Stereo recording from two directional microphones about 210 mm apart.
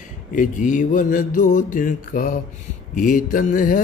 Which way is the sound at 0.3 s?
35° left (ahead or behind).